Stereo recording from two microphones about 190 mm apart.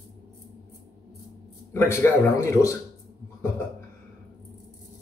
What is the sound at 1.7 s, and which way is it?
Speech, 15° left (ahead or behind).